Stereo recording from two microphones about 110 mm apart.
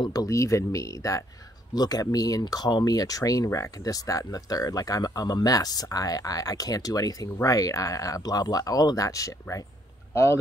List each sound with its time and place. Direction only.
0.0 s speech: 35° left (ahead or behind)